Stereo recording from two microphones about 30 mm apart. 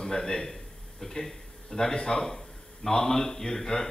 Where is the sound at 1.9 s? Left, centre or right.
Left.